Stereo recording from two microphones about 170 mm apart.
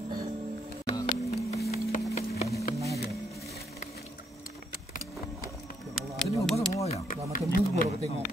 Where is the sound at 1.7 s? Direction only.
40° left (ahead or behind).